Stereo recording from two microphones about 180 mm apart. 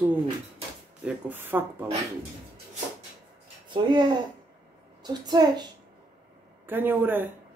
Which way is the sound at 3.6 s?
25° right (ahead or behind).